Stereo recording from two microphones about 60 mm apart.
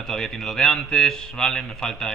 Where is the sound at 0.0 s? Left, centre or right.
Centre.